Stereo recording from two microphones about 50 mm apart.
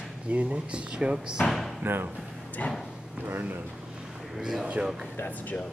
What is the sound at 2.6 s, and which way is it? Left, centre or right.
Speech, left.